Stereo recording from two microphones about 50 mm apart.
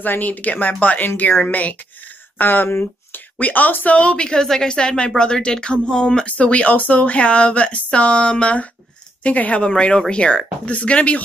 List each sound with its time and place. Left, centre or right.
0.0 s speech: left